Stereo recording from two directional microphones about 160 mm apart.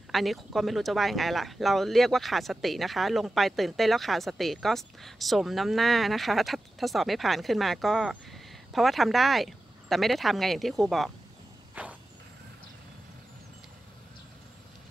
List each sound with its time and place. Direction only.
0.1 s speech: centre (ahead or behind)
11.7 s walk: 10° right (ahead or behind)